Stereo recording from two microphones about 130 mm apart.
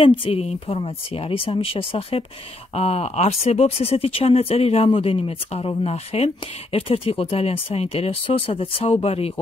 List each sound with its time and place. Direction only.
0.0 s speech: 45° left (ahead or behind)